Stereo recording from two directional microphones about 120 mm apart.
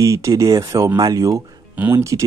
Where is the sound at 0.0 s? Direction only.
25° right (ahead or behind).